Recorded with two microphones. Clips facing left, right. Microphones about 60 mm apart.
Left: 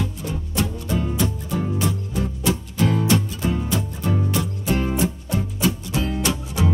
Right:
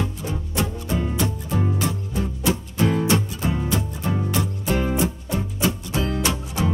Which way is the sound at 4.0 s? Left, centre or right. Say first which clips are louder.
Left 2 dB; centre.